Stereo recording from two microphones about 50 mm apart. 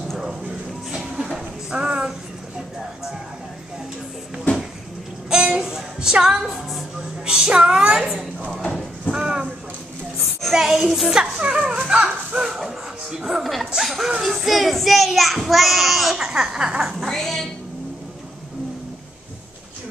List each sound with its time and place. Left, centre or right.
0.9 s a sound: centre
5.3 s music: centre
5.9 s a woman's voice: centre
7.2 s a child's voice: centre
9.1 s a sound: centre
10.5 s a child's voice: centre
12.4 s music: centre
13.4 s speech: centre
16.3 s speech: centre
17.1 s a woman's voice: centre